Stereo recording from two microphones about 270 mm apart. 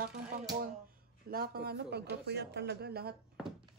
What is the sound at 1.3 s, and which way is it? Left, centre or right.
Speech, right.